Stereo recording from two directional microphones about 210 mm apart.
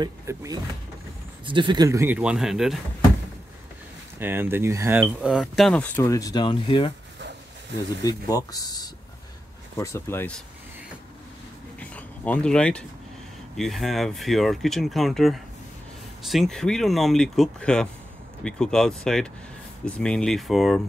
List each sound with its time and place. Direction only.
0.0 s speech: 15° right (ahead or behind)
4.2 s speech: 10° right (ahead or behind); by 6.9 s 25° left (ahead or behind)
8.0 s speech: 15° left (ahead or behind)
11.8 s a sound: 5° left (ahead or behind)
13.6 s speech: centre (ahead or behind)